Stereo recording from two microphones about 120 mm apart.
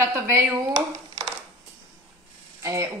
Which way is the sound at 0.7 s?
40° right (ahead or behind).